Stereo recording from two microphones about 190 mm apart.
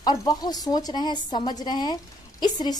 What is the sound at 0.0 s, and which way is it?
A woman's voice, 20° left (ahead or behind).